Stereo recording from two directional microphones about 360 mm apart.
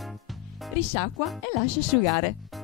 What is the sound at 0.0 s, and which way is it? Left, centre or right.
Music, centre.